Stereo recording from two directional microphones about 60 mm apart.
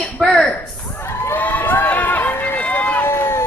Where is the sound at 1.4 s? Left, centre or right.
Left.